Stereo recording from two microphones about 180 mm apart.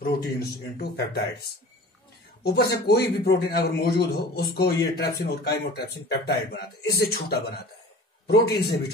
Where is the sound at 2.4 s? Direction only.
60° left (ahead or behind).